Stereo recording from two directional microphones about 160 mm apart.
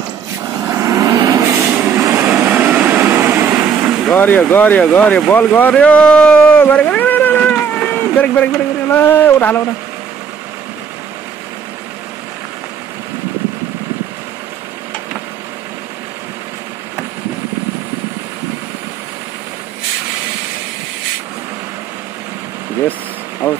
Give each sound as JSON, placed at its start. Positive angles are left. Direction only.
{"t": 0.7, "sound": "vehicle", "side_deg": -20}
{"t": 1.7, "sound": "train", "side_deg": -15}
{"t": 4.1, "sound": "speech", "side_deg": 10}